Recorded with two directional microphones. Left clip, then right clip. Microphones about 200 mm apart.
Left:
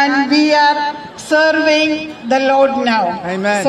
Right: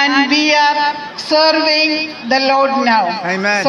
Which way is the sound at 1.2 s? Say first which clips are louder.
Even; 15° left (ahead or behind).